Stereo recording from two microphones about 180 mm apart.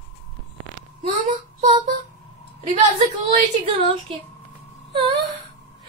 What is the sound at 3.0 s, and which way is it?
Speech, 35° right (ahead or behind).